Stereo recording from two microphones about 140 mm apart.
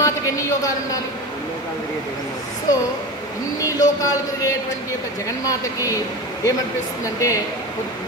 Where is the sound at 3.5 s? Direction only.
25° left (ahead or behind).